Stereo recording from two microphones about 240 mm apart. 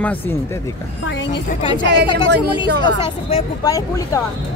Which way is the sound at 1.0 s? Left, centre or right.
Left.